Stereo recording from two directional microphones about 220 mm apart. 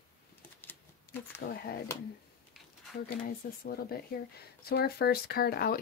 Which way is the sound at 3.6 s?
45° left (ahead or behind).